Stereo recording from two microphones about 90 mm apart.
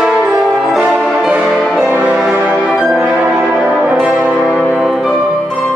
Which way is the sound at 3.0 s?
20° right (ahead or behind).